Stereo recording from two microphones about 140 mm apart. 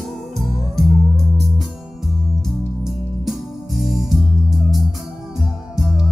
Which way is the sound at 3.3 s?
Centre (ahead or behind).